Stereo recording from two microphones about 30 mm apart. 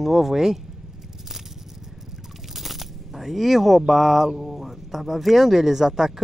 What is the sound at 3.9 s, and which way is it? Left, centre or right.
Speech, centre.